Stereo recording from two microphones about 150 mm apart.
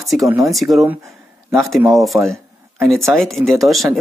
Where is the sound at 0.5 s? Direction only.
Centre (ahead or behind).